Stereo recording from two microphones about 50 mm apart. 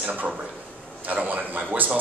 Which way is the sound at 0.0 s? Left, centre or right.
Right.